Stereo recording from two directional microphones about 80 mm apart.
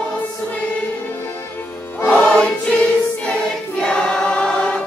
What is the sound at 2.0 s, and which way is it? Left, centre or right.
Choir, left.